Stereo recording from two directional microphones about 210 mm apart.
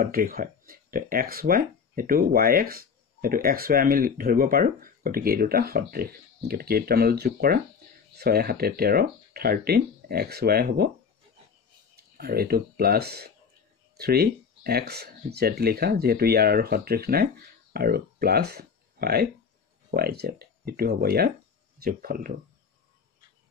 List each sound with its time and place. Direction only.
0.0 s speech: 45° right (ahead or behind)
11.9 s speech: 45° right (ahead or behind)